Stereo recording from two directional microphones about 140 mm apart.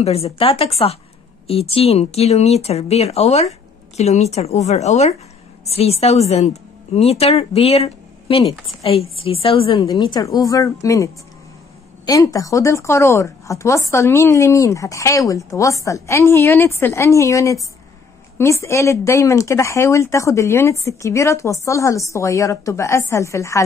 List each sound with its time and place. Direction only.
0.0 s a woman's voice: 45° left (ahead or behind); by 11.1 s 25° left (ahead or behind)
12.1 s speech: 25° left (ahead or behind)